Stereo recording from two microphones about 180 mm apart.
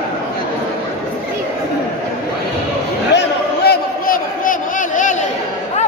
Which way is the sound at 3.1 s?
65° left (ahead or behind).